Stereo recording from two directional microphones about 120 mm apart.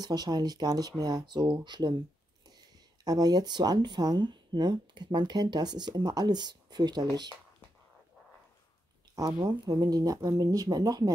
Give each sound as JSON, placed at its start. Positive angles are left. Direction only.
{"t": 0.0, "sound": "speech", "side_deg": -35}
{"t": 3.0, "sound": "speech", "side_deg": -35}
{"t": 9.1, "sound": "speech", "side_deg": -30}